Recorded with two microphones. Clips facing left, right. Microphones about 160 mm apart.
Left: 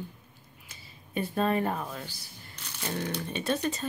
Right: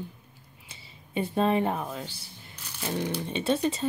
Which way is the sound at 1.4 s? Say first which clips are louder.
Right 3 dB; 20° right (ahead or behind).